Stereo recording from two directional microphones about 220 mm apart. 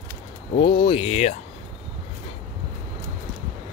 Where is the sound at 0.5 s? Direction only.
25° left (ahead or behind).